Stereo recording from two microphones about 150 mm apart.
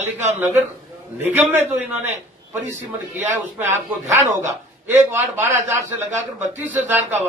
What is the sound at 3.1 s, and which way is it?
A man's voice, 15° right (ahead or behind).